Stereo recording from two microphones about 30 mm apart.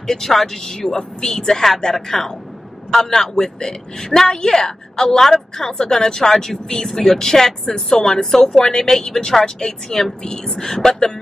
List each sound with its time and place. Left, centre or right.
0.0 s speech: centre
0.3 s a woman's voice: centre
0.6 s a woman's voice: centre